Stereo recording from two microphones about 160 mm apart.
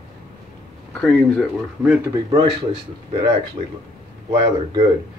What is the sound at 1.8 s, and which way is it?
Speech, 5° right (ahead or behind).